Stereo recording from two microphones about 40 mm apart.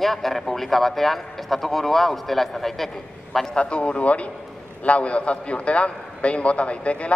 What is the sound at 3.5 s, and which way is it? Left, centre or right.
A man's voice, left.